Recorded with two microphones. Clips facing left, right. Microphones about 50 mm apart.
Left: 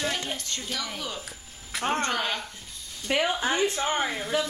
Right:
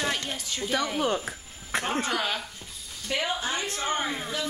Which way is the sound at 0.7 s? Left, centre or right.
Right.